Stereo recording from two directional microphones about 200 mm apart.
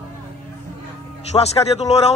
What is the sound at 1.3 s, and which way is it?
Speech, 30° left (ahead or behind).